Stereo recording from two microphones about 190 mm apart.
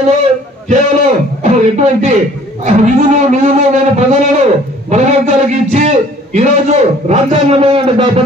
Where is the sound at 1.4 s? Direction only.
40° right (ahead or behind).